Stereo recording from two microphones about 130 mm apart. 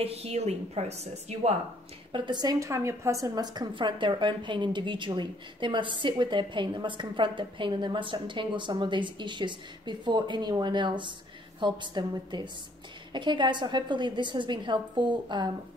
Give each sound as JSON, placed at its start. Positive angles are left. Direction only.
{"t": 0.0, "sound": "a woman's voice", "side_deg": -50}
{"t": 2.1, "sound": "a woman's voice", "side_deg": -35}
{"t": 3.5, "sound": "a woman's voice", "side_deg": -35}